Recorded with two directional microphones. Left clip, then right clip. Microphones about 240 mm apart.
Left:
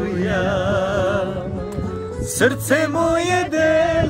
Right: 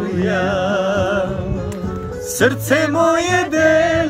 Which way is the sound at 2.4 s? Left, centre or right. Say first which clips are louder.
Right 2 dB; centre.